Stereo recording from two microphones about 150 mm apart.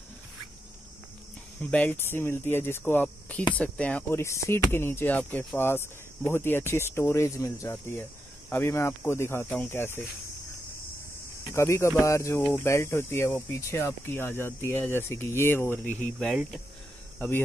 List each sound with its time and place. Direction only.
1.6 s speech: 10° left (ahead or behind)
11.5 s speech: 20° left (ahead or behind)
16.0 s speech: 5° left (ahead or behind)